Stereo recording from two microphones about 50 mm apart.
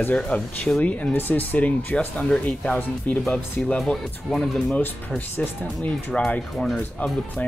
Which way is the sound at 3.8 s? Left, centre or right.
Centre.